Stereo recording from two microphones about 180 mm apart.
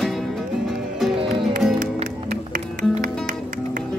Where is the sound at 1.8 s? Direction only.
50° right (ahead or behind).